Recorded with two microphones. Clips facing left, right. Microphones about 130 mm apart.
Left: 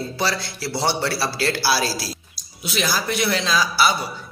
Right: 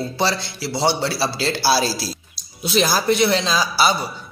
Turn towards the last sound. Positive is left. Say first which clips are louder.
# right 1 dB
turn(degrees=-25)  # may be behind; listen again after turning